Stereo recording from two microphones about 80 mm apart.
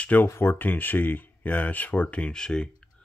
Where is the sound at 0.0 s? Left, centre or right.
Left.